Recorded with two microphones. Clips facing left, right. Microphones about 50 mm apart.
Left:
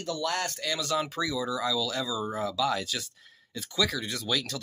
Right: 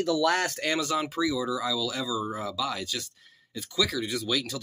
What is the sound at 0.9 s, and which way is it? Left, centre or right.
Speech, centre.